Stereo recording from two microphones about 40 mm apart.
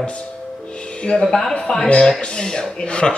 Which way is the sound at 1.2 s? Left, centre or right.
Centre.